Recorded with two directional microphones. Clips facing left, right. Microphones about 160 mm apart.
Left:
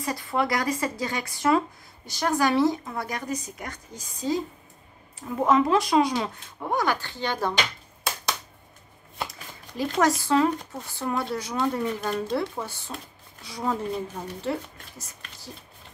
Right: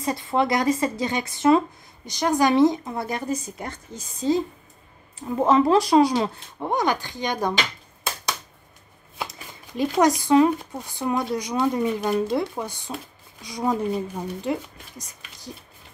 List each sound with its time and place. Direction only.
0.0 s a woman's voice: 25° right (ahead or behind)
5.4 s a woman's voice: 30° right (ahead or behind); by 7.5 s 15° right (ahead or behind)
9.9 s speech: 15° right (ahead or behind)